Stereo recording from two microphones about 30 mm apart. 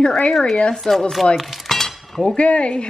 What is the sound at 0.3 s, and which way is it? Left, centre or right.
Speech, centre.